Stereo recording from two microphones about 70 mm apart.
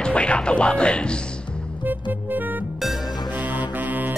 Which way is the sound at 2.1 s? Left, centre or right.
Right.